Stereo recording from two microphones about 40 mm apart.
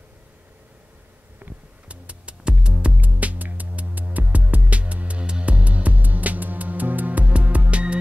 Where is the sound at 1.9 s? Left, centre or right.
Right.